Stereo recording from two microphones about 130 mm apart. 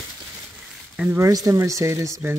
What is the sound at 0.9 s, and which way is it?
Speech, 10° right (ahead or behind).